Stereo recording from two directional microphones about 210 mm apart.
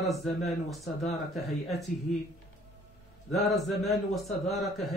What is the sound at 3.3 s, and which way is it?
A man's voice, centre (ahead or behind).